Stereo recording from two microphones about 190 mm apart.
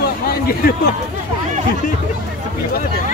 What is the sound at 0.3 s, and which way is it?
Speech, 55° left (ahead or behind).